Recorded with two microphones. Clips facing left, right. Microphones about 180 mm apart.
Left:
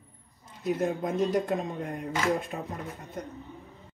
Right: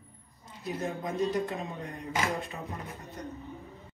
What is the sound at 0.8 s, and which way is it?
Speech, 60° left (ahead or behind).